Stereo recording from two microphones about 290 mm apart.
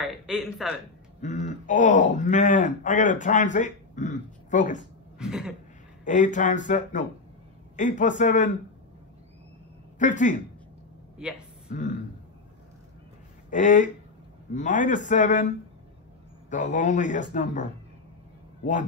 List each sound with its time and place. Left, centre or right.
0.0 s a man's voice: centre
1.2 s a man's voice: left
5.2 s throat clearing: centre
6.0 s a man's voice: left
9.9 s speech: left
11.1 s speech: centre
13.5 s a man's voice: left
16.4 s a man's voice: left